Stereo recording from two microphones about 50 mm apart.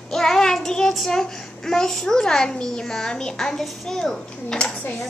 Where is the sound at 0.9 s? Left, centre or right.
Centre.